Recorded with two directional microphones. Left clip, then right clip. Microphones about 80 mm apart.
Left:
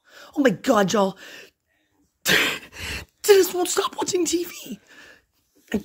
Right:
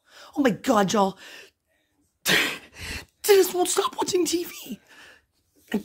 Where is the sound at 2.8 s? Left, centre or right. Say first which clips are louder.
Left 5 dB; left.